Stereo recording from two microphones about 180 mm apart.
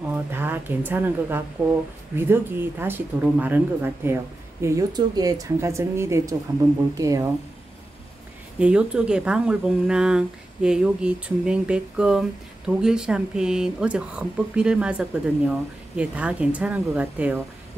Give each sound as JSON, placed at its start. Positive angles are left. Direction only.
{"t": 0.1, "sound": "speech", "side_deg": -10}
{"t": 8.5, "sound": "speech", "side_deg": -5}